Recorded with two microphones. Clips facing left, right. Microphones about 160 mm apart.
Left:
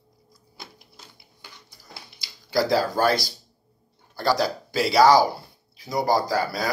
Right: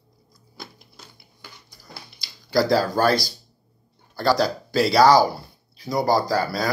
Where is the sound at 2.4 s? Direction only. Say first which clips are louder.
Right 2 dB; 15° left (ahead or behind).